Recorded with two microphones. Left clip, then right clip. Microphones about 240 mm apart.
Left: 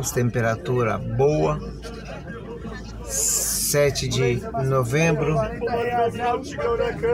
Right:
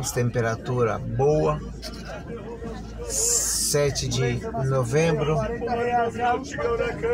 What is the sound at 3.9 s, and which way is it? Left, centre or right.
Speech, left.